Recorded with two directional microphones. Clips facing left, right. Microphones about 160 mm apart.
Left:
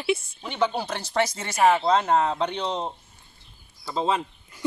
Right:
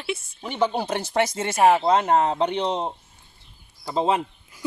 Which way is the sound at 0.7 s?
20° right (ahead or behind).